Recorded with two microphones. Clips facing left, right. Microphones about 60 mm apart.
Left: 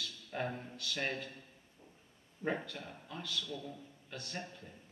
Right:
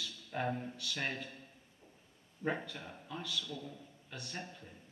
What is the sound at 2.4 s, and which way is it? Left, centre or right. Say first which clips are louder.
A man's voice: even; centre.